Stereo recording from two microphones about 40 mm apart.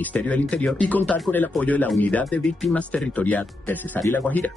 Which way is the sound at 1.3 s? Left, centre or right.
Left.